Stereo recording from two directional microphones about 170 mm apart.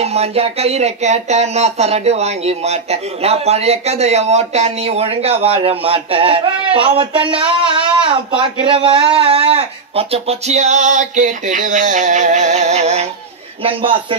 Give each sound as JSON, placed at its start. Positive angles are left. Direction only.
{"t": 0.0, "sound": "speech", "side_deg": -35}